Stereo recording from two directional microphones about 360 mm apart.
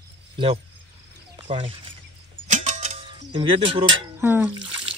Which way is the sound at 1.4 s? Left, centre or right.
Centre.